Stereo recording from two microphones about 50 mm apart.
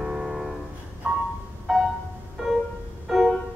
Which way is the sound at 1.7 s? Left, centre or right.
Centre.